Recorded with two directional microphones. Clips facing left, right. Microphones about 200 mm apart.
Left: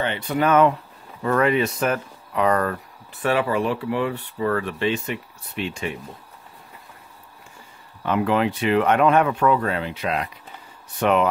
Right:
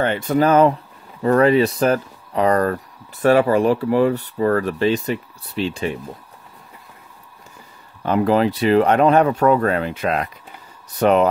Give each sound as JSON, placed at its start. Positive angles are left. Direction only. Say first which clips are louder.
{"t": 0.0, "sound": "speech", "louder": "right 5 dB", "side_deg": -45}
{"t": 8.0, "sound": "speech", "louder": "right 4 dB", "side_deg": -35}
{"t": 11.0, "sound": "speech", "louder": "right 4 dB", "side_deg": -40}